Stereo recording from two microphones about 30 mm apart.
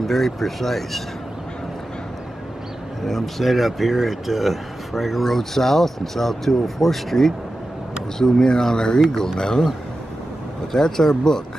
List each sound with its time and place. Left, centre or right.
0.0 s speech: centre
3.1 s speech: centre
8.2 s speech: centre
10.7 s speech: centre